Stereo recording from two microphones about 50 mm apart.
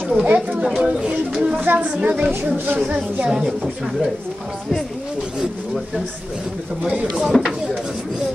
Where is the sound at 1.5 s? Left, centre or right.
Right.